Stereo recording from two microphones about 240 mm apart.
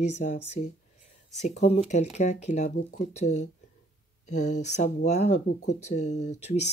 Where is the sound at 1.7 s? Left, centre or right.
Left.